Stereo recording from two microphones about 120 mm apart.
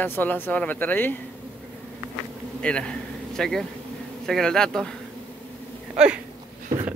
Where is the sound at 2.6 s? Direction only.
10° left (ahead or behind).